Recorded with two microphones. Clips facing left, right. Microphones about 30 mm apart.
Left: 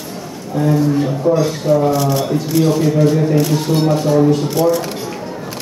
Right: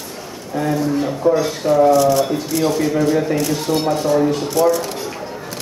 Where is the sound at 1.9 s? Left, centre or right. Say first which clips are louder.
Right 2 dB; centre.